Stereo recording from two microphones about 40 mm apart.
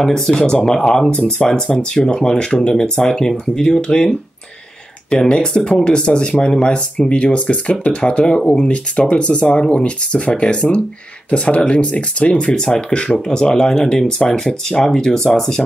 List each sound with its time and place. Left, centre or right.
0.0 s speech: centre
1.1 s speech: left
5.3 s speech: centre
12.4 s speech: centre